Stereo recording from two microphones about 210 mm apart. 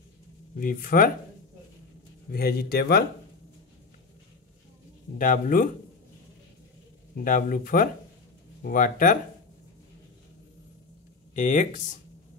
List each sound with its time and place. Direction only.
0.6 s speech: 40° left (ahead or behind)
2.3 s speech: 45° left (ahead or behind)
5.2 s speech: 40° left (ahead or behind)
7.2 s speech: 40° left (ahead or behind)
11.3 s speech: 35° left (ahead or behind)